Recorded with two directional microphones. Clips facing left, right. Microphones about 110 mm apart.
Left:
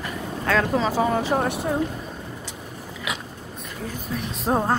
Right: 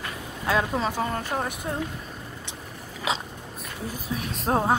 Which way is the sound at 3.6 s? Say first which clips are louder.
Left 2 dB; centre (ahead or behind).